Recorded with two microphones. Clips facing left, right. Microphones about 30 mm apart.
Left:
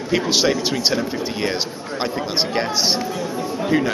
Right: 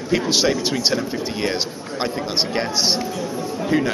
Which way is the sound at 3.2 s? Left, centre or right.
Centre.